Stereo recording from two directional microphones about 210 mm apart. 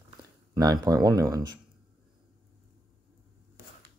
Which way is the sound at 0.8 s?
15° right (ahead or behind).